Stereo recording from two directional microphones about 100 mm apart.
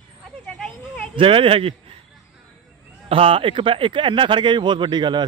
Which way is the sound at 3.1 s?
65° right (ahead or behind).